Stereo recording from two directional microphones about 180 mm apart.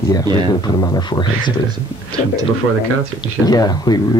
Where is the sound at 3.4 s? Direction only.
20° left (ahead or behind).